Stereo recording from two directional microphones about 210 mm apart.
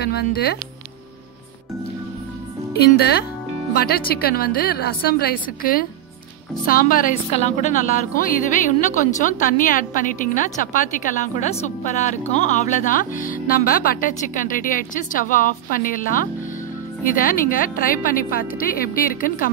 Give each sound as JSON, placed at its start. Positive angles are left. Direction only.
{"t": 0.0, "sound": "a woman's voice", "side_deg": 50}
{"t": 2.8, "sound": "a woman's voice", "side_deg": 50}